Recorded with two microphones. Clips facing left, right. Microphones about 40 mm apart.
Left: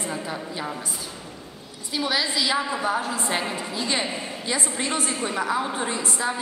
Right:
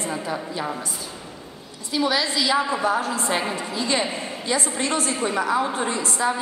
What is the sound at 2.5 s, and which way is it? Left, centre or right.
Speech, centre.